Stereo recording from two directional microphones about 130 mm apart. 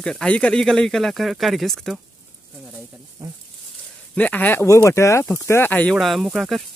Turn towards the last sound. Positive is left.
turn(degrees=0)  # may be behind; listen again after turning